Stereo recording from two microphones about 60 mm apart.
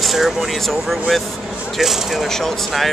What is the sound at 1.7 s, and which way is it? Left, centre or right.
Speech, centre.